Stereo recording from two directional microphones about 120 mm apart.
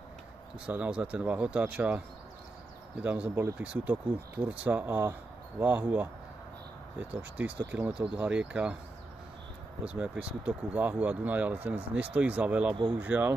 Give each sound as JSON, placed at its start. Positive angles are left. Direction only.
{"t": 0.7, "sound": "speech", "side_deg": -10}
{"t": 9.8, "sound": "speech", "side_deg": -10}